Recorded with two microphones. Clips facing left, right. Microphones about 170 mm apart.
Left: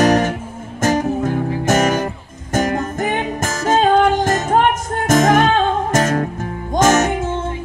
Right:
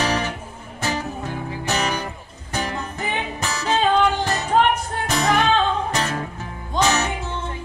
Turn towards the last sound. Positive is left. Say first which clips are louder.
# left 8 dB
turn(degrees=45)  # may be behind; listen again after turning